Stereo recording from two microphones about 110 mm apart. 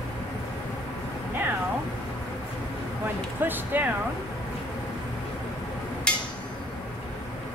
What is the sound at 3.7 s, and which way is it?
Speech, 15° right (ahead or behind).